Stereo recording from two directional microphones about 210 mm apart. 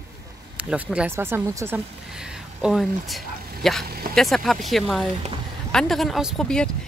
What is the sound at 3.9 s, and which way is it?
Speech, 45° right (ahead or behind).